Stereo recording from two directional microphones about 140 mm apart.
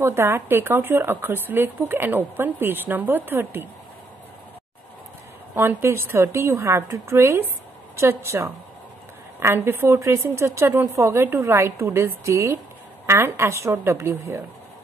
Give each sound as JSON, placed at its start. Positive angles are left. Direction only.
{"t": 0.0, "sound": "speech", "side_deg": -20}
{"t": 5.5, "sound": "a woman's voice", "side_deg": -15}